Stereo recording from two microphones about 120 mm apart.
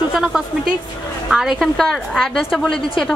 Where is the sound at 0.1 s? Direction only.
5° right (ahead or behind).